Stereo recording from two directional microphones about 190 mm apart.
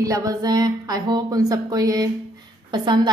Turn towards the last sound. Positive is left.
turn(degrees=-25)  # may be behind; listen again after turning